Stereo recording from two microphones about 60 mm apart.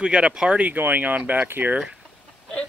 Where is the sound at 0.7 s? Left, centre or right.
Right.